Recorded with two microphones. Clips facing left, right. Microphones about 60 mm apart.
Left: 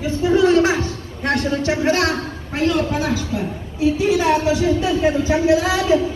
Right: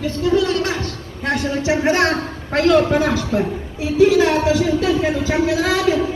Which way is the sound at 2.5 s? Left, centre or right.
Right.